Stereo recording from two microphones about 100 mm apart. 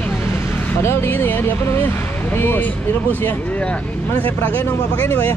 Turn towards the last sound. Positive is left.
turn(degrees=20)  # may be behind; listen again after turning